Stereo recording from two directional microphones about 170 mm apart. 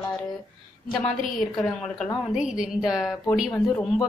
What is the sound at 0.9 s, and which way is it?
A woman's voice, centre (ahead or behind).